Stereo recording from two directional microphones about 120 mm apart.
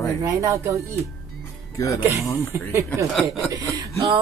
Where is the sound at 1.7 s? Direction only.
25° left (ahead or behind).